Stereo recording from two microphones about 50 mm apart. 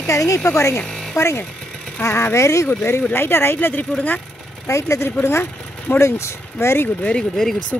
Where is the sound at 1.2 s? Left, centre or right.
Left.